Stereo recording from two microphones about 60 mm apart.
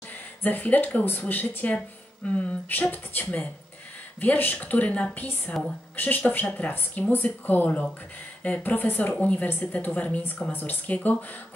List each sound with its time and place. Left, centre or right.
0.1 s a woman's voice: left
6.7 s a woman's voice: left